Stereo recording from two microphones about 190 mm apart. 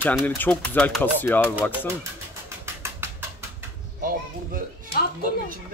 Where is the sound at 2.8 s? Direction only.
15° right (ahead or behind).